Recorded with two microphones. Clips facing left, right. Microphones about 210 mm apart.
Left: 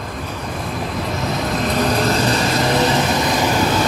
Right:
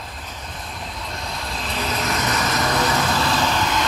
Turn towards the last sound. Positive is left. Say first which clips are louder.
# left 4 dB
turn(degrees=15)  # may be behind; listen again after turning